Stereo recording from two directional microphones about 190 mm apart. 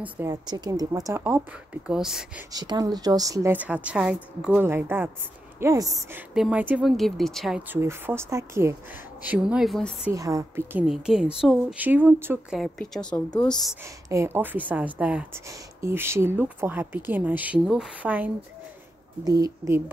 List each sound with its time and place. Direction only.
0.0 s speech: 15° right (ahead or behind)
2.5 s speech: 20° right (ahead or behind)
6.3 s speech: 5° right (ahead or behind)
10.1 s speech: 15° right (ahead or behind)
12.5 s speech: centre (ahead or behind)
13.8 s speech: 15° right (ahead or behind)
19.2 s speech: 20° right (ahead or behind)